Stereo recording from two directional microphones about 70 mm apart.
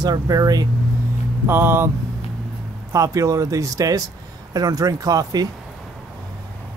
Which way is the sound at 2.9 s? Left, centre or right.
Right.